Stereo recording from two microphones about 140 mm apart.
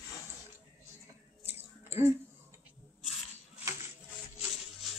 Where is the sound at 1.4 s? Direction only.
15° right (ahead or behind).